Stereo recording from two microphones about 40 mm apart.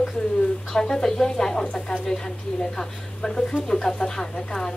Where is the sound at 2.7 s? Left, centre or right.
Centre.